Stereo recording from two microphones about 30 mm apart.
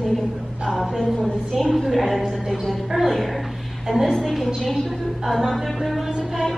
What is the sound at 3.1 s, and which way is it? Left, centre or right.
Speech, centre.